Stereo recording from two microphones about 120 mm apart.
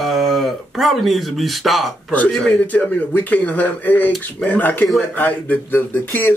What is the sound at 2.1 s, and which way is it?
Speech, 10° left (ahead or behind).